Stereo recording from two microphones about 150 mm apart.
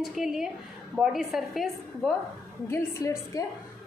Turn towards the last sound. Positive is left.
turn(degrees=20)  # may be behind; listen again after turning